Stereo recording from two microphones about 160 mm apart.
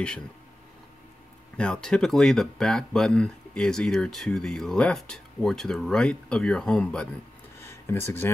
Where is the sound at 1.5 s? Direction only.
5° left (ahead or behind).